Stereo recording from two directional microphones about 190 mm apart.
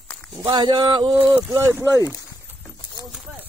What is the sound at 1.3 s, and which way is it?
Speech, 10° right (ahead or behind).